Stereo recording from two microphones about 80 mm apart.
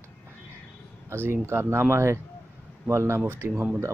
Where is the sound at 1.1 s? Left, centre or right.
Right.